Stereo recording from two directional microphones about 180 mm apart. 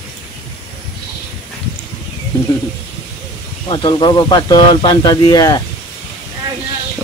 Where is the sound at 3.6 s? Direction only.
25° left (ahead or behind).